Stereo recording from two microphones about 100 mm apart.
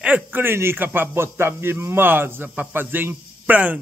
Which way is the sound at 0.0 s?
15° right (ahead or behind).